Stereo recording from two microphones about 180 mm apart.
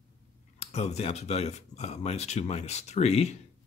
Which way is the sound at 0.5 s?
35° left (ahead or behind).